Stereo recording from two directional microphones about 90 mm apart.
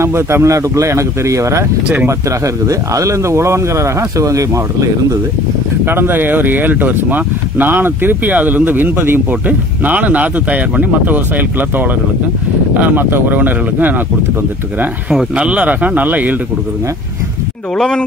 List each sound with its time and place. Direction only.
0.0 s speech: 30° right (ahead or behind)
5.9 s speech: 25° right (ahead or behind)
15.1 s speech: 10° right (ahead or behind)
17.7 s speech: 5° left (ahead or behind)